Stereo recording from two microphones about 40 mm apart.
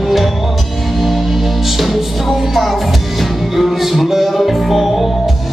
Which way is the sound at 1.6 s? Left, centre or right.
Centre.